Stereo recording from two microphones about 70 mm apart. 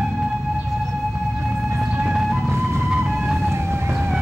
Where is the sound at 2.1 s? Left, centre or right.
Centre.